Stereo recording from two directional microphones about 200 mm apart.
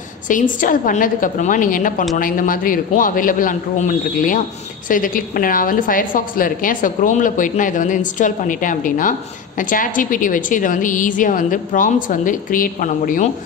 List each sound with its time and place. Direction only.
0.3 s a woman's voice: 40° left (ahead or behind)